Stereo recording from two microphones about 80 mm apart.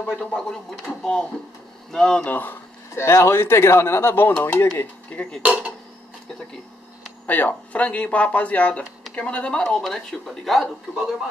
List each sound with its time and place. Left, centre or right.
0.2 s speech: centre
2.3 s speech: left
5.4 s speech: centre
7.2 s speech: left; by 11.1 s centre